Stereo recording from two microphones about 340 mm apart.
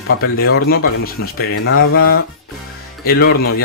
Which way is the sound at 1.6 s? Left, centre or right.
Left.